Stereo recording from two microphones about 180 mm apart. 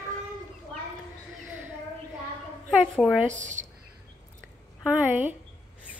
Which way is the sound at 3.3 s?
45° right (ahead or behind).